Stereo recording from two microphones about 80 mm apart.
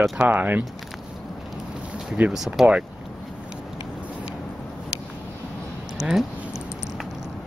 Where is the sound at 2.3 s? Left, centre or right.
Centre.